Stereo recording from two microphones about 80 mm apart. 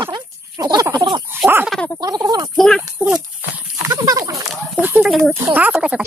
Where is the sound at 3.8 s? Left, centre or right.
Right.